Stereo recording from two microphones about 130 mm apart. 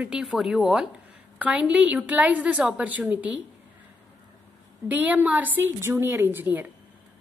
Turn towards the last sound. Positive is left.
turn(degrees=-15)  # may be behind; listen again after turning